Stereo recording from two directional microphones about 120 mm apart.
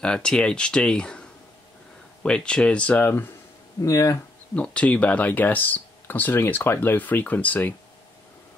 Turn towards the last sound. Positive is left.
turn(degrees=15)  # may be behind; listen again after turning